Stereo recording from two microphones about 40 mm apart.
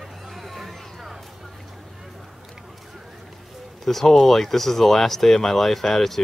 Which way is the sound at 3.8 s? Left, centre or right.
Centre.